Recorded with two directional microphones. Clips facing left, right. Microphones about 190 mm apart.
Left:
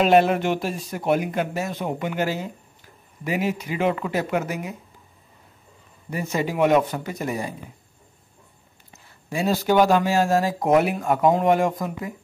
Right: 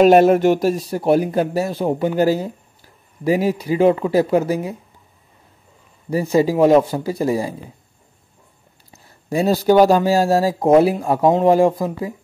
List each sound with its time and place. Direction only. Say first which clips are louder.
0.0 s speech: right 7 dB; 40° right (ahead or behind)
6.0 s speech: right 9 dB; 35° right (ahead or behind)
8.9 s speech: right 8 dB; 40° right (ahead or behind)